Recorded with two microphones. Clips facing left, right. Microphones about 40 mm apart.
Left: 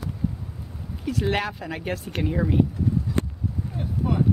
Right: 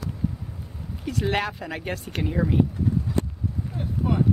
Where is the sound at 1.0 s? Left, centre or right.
Centre.